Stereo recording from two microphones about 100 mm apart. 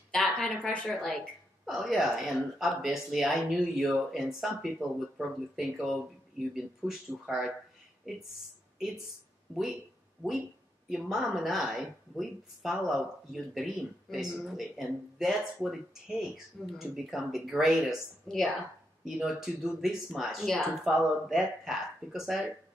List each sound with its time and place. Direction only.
0.1 s speech: 5° left (ahead or behind)
8.7 s speech: 5° right (ahead or behind)
10.9 s speech: 5° right (ahead or behind)